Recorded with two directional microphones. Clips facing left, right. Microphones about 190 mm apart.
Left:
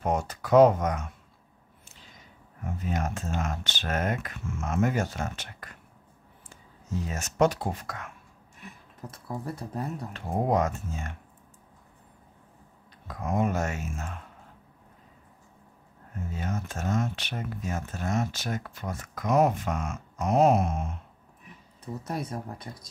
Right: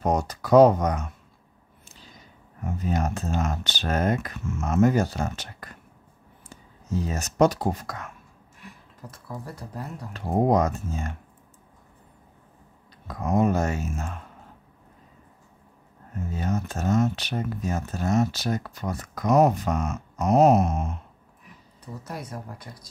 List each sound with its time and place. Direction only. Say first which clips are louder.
0.0 s speech: right 3 dB; 40° right (ahead or behind)
2.8 s speech: right 4 dB; 40° right (ahead or behind)
7.1 s speech: right 3 dB; 35° right (ahead or behind)
9.1 s speech: left 3 dB; 25° left (ahead or behind)
10.1 s speech: right 5 dB; 40° right (ahead or behind)
13.2 s speech: right 5 dB; 40° right (ahead or behind)
16.3 s speech: right 5 dB; 40° right (ahead or behind)
22.0 s speech: left 3 dB; 25° left (ahead or behind)